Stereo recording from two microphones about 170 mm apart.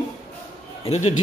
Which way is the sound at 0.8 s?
40° left (ahead or behind).